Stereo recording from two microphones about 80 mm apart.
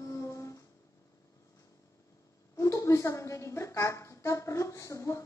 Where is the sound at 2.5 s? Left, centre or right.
Left.